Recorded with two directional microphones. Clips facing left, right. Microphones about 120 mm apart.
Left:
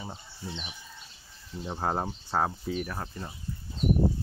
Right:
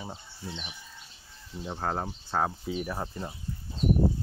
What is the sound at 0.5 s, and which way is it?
Speech, 10° left (ahead or behind).